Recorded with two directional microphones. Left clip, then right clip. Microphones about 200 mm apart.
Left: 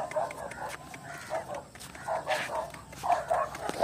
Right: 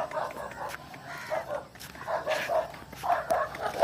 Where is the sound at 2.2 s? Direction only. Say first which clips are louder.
Right 2 dB; 5° left (ahead or behind).